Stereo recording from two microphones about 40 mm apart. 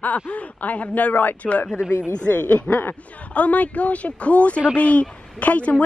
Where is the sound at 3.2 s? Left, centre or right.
Left.